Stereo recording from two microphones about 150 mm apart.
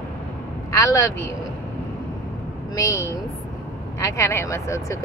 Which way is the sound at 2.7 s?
20° left (ahead or behind).